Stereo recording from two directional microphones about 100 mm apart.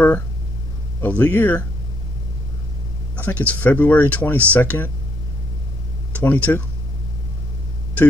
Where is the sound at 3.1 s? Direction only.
15° left (ahead or behind).